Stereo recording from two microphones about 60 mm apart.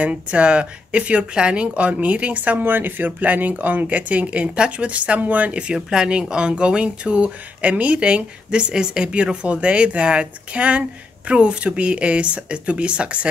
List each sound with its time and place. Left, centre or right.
0.0 s speech: right
2.6 s speech: right; by 5.8 s centre
5.8 s speech: centre